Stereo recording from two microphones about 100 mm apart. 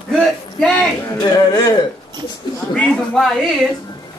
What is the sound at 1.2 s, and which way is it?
Speech, 40° left (ahead or behind).